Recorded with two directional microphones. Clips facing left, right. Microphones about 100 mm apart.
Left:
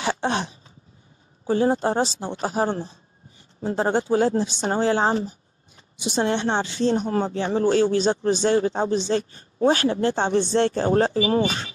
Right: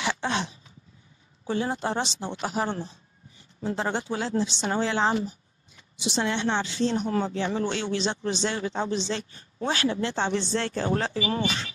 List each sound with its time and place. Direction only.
0.0 s throat clearing: 45° left (ahead or behind)
1.4 s speech: 40° left (ahead or behind)